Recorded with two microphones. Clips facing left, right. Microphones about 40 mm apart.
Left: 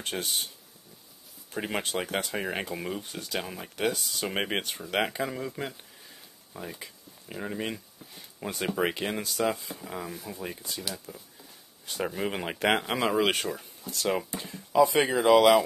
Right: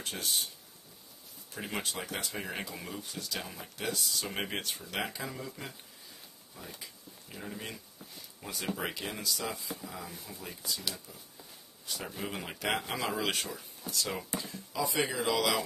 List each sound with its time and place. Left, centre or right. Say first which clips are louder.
0.0 s speech: left 3 dB; left
1.5 s speech: left 6 dB; left
3.0 s speech: left 5 dB; left
3.7 s speech: left 6 dB; left
6.8 s speech: left 3 dB; left